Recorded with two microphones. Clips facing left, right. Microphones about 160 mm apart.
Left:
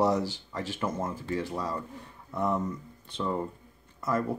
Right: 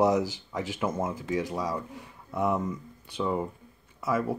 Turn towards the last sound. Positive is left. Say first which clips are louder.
# right 1 dB
turn(degrees=-5)  # may be behind; listen again after turning